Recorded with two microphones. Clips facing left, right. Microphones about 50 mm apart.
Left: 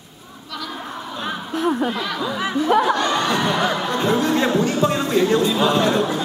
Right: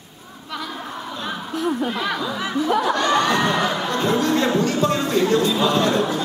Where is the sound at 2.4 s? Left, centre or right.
Left.